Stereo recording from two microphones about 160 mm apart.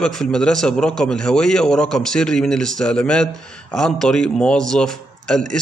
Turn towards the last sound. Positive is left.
turn(degrees=5)  # may be behind; listen again after turning